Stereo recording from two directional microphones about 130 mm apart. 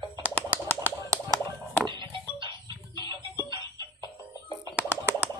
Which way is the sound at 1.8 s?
40° right (ahead or behind).